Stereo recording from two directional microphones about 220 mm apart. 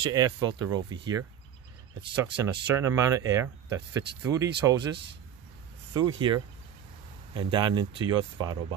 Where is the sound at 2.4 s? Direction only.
15° right (ahead or behind).